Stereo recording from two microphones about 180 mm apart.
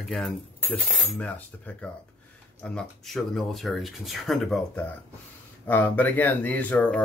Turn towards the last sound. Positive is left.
turn(degrees=10)  # may be behind; listen again after turning